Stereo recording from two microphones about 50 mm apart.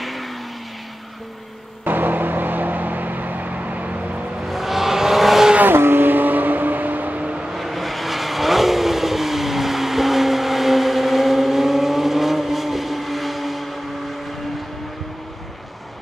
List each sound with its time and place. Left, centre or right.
0.0 s vehicle: centre
1.9 s vehicle: right
4.5 s vehicle: centre
5.6 s vehicle: right
7.5 s vehicle: centre